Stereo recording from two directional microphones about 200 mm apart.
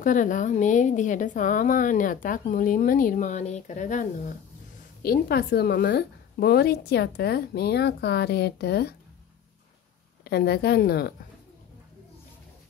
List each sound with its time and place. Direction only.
0.0 s a woman's voice: 40° left (ahead or behind)
10.2 s a woman's voice: 55° left (ahead or behind)